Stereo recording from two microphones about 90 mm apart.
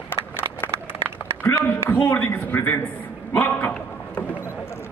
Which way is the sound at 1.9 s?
25° left (ahead or behind).